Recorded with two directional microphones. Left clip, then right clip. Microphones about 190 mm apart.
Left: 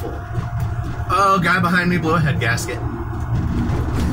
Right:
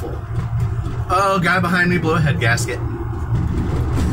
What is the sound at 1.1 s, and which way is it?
Speech, 15° right (ahead or behind).